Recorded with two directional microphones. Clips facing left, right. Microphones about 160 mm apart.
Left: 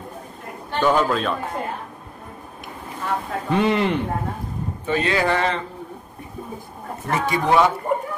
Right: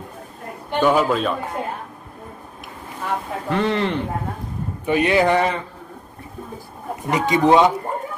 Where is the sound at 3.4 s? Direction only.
15° left (ahead or behind).